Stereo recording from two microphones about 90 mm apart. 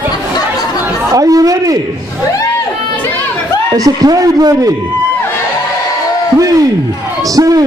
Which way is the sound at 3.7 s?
45° right (ahead or behind).